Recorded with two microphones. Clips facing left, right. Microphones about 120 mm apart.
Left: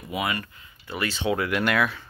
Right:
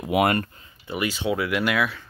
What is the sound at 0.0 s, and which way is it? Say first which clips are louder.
Speech: right 8 dB; 65° right (ahead or behind).